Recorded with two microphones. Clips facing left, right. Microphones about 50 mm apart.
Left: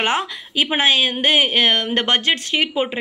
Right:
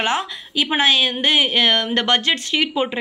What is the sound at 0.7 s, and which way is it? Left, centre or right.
A woman's voice, centre.